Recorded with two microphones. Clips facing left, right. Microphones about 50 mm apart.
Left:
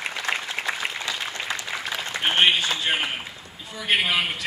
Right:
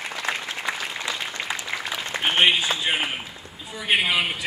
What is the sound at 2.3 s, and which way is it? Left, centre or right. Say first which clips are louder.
A man's voice: right 1 dB; centre.